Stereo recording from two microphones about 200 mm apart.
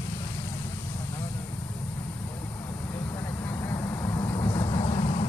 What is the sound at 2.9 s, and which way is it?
Vehicle, 15° left (ahead or behind).